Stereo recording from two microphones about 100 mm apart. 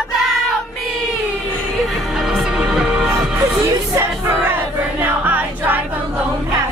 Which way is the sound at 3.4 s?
30° right (ahead or behind).